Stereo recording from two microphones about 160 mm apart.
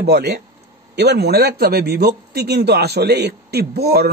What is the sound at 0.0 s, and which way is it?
Speech, 90° right.